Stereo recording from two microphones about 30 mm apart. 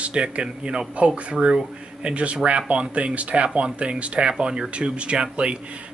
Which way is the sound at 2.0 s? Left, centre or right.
Right.